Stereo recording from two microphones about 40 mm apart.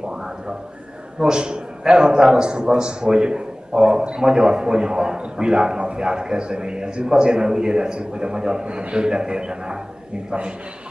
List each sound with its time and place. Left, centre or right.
0.1 s a sound: centre
1.2 s a man's voice: right
10.3 s a man's voice: right